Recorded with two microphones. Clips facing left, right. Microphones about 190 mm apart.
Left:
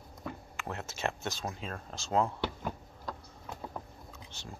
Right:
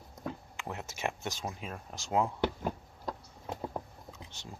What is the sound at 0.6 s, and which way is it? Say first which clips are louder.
Speech: left 1 dB; 15° right (ahead or behind).